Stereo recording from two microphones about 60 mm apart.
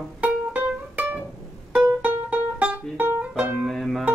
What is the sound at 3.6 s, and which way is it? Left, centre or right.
Music, centre.